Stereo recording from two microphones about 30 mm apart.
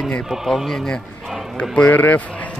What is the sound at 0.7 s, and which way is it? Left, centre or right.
Speech, centre.